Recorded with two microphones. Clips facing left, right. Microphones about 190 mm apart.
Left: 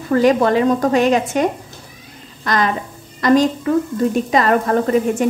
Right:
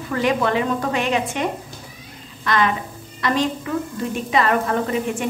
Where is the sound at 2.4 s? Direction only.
40° left (ahead or behind).